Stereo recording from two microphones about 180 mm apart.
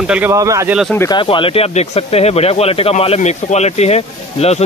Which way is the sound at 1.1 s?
30° left (ahead or behind).